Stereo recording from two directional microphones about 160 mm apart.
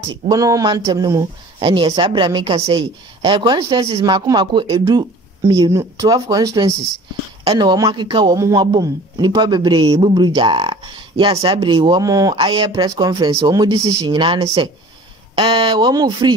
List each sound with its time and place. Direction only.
0.3 s a man's voice: 20° right (ahead or behind)